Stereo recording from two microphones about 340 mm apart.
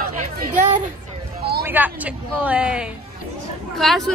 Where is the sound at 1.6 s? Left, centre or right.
Centre.